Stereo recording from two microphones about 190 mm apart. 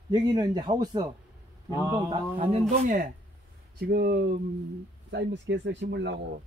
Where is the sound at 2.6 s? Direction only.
45° right (ahead or behind).